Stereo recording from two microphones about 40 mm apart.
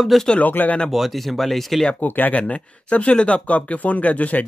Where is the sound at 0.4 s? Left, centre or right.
Left.